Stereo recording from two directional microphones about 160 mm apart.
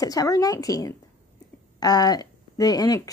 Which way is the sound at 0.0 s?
20° left (ahead or behind).